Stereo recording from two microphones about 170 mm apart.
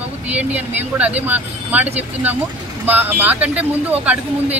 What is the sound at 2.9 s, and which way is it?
Speech, 10° right (ahead or behind).